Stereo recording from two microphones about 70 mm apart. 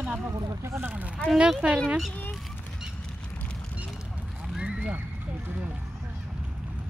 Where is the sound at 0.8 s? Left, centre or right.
Right.